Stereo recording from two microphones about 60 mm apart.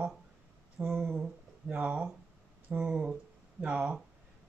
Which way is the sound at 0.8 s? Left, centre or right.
Right.